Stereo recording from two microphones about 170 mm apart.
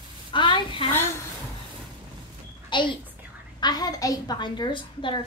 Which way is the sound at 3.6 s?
25° left (ahead or behind).